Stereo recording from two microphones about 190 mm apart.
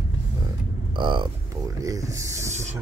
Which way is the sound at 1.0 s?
25° right (ahead or behind).